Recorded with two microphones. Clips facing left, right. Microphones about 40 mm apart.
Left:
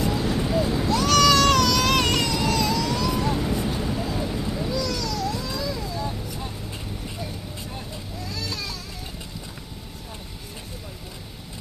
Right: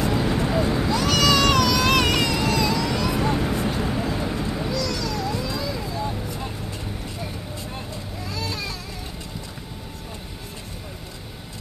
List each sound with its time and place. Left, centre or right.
0.0 s vehicle: centre
0.5 s a sound: right
0.8 s baby cry: centre
2.0 s vehicle: centre
8.4 s vehicle: right